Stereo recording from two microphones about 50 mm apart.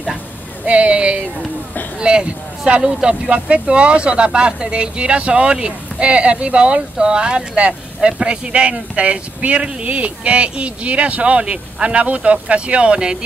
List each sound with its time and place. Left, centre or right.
0.7 s speech: right